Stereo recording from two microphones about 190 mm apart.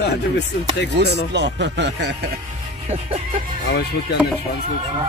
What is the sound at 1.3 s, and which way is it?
Speech, 65° right (ahead or behind).